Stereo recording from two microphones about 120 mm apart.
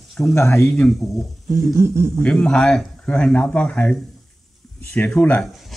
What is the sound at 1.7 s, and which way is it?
Speech, 20° right (ahead or behind).